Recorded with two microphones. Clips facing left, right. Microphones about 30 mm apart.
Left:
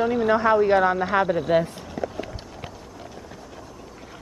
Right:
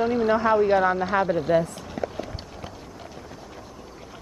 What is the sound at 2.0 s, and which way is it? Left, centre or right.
Run, centre.